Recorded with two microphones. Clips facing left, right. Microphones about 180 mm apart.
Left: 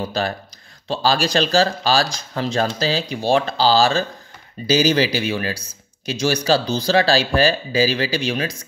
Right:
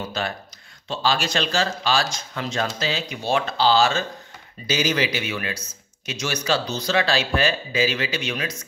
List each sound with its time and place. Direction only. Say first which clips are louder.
0.0 s speech: left 5 dB; 35° left (ahead or behind)